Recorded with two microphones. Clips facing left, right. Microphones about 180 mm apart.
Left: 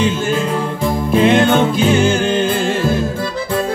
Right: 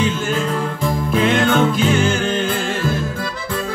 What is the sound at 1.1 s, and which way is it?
Music, 30° left (ahead or behind).